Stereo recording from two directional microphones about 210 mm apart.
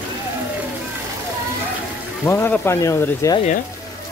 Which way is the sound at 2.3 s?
10° left (ahead or behind).